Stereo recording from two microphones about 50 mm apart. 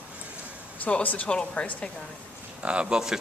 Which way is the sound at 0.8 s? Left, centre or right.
Left.